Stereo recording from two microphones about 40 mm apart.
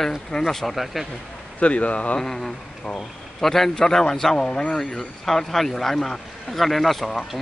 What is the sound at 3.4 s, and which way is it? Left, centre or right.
Speech, centre.